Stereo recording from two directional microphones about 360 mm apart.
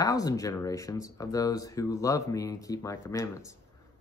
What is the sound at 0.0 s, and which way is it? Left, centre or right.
Speech, centre.